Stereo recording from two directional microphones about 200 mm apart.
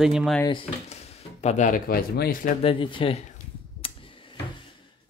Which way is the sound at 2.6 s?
25° left (ahead or behind).